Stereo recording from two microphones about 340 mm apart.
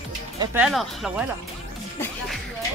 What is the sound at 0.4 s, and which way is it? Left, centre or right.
Speech, centre.